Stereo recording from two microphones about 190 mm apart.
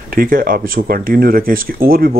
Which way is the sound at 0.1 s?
50° right (ahead or behind).